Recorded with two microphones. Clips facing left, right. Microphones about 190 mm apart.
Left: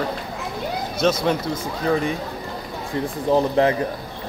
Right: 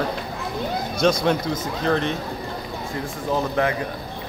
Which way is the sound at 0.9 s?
5° left (ahead or behind).